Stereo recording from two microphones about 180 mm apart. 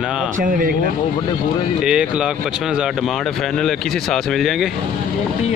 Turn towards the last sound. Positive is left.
turn(degrees=0)  # may be behind; listen again after turning